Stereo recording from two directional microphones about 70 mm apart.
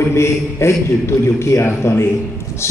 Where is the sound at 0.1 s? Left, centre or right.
Left.